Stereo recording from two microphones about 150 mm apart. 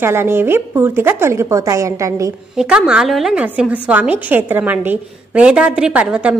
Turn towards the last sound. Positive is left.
turn(degrees=-10)  # may be behind; listen again after turning